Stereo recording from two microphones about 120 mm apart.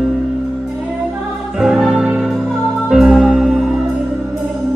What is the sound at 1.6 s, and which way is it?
Music, 5° right (ahead or behind).